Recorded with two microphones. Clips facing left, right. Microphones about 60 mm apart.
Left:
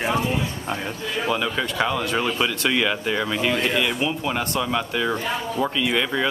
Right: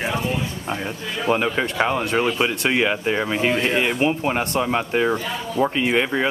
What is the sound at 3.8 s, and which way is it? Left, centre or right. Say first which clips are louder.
Speech: right 3 dB; right.